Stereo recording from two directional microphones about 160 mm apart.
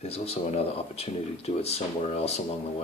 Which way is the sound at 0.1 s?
40° left (ahead or behind).